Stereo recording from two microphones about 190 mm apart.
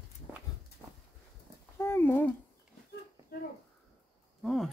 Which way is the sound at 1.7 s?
15° left (ahead or behind).